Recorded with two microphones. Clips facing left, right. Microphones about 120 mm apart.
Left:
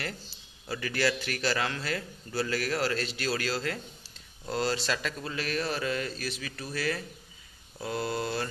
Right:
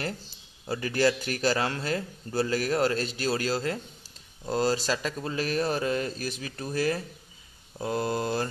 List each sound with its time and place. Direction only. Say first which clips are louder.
0.7 s speech: right 4 dB; 30° right (ahead or behind)
2.9 s speech: right 3 dB; 35° right (ahead or behind)
4.5 s speech: right 4 dB; 40° right (ahead or behind)
6.4 s speech: right 6 dB; 25° right (ahead or behind)
7.8 s speech: right 3 dB; 40° right (ahead or behind)